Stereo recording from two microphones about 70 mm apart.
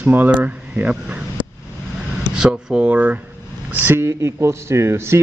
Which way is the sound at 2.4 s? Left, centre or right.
Centre.